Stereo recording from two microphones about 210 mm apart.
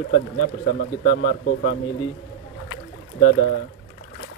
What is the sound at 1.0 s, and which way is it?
Speech, 45° left (ahead or behind).